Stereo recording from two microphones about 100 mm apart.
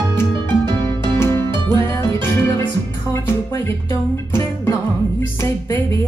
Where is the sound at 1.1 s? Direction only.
25° left (ahead or behind).